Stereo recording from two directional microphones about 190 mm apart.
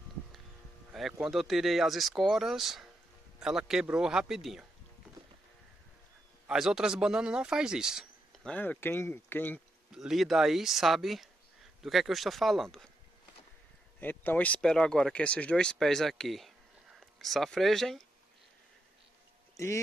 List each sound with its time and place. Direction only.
0.9 s speech: centre (ahead or behind)
6.4 s speech: 5° right (ahead or behind)
9.9 s speech: centre (ahead or behind)
13.9 s speech: 10° left (ahead or behind)
19.5 s speech: 15° left (ahead or behind)